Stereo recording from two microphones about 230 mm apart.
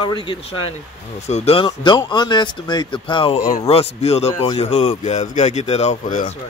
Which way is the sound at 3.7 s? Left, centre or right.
Left.